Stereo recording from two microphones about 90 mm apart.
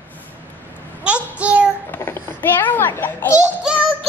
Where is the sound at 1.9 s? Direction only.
25° left (ahead or behind).